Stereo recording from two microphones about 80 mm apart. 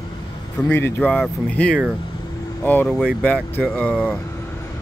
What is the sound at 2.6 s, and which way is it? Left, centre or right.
Speech, left.